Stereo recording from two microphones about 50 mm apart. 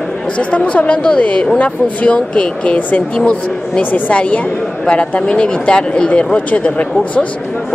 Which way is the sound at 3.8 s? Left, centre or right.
Left.